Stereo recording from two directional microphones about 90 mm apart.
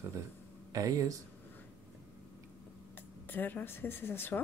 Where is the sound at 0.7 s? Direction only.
40° right (ahead or behind).